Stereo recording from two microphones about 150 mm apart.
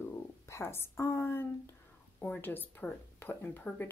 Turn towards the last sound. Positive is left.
turn(degrees=15)  # may be behind; listen again after turning